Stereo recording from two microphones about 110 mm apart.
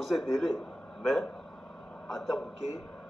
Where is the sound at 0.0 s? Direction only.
Centre (ahead or behind).